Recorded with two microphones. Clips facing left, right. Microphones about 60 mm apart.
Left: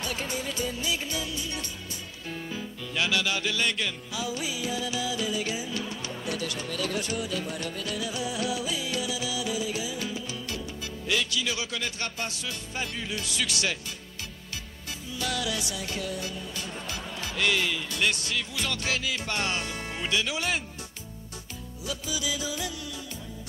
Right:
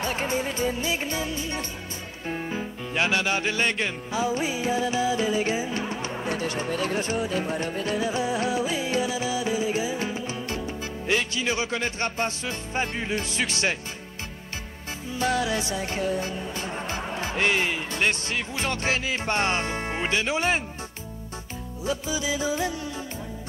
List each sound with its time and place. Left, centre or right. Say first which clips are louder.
0.0 s music: right 6 dB; right
15.0 s music: right 6 dB; right
21.8 s music: right 5 dB; right